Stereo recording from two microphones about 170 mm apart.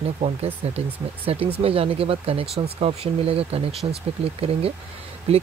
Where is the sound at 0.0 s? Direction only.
40° right (ahead or behind).